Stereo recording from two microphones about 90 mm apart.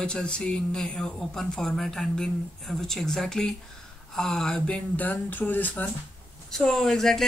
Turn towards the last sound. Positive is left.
turn(degrees=5)  # may be behind; listen again after turning